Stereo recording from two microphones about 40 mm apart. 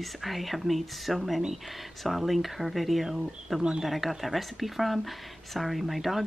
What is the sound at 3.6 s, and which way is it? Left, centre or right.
Speech, centre.